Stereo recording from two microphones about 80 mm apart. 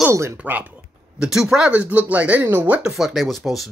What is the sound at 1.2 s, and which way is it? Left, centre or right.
Speech, centre.